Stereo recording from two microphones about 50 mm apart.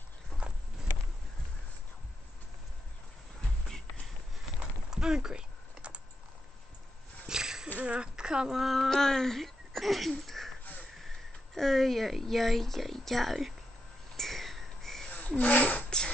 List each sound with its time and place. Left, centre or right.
0.3 s clip-clop: centre
4.9 s typing: centre
7.2 s a sound: centre
7.8 s speech: right; by 13.6 s centre
14.1 s a sound: centre
15.0 s speech: left